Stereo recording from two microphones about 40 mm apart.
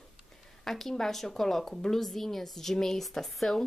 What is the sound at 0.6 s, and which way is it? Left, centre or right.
Speech, centre.